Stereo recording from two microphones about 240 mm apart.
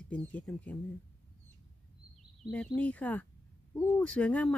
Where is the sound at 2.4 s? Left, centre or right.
Centre.